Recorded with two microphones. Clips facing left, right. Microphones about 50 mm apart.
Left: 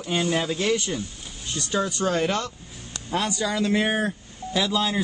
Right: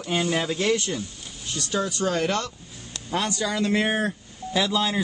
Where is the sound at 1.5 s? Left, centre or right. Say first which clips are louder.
Left 1 dB; left.